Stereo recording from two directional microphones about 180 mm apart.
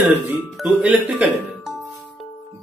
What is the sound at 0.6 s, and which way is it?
Speech, 5° right (ahead or behind).